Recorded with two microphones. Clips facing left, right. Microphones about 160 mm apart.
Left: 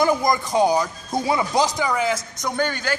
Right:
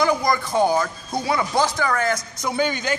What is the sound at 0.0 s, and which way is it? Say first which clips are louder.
A man's voice: left 1 dB; 20° left (ahead or behind).